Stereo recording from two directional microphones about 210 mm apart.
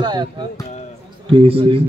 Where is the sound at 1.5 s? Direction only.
25° right (ahead or behind).